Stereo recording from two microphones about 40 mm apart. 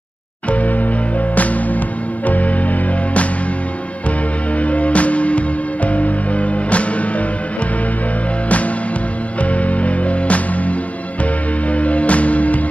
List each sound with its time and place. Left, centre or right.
0.5 s music: left
4.6 s music: left
8.5 s music: left